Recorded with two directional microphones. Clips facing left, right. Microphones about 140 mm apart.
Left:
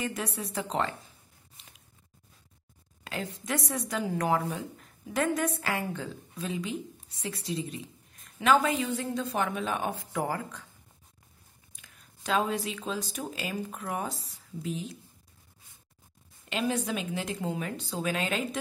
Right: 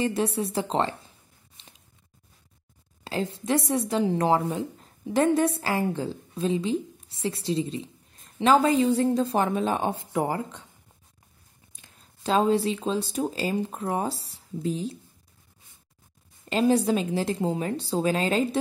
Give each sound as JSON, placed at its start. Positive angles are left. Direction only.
{"t": 0.0, "sound": "a woman's voice", "side_deg": -30}
{"t": 3.0, "sound": "a woman's voice", "side_deg": -30}
{"t": 11.7, "sound": "speech", "side_deg": -30}
{"t": 16.4, "sound": "speech", "side_deg": -35}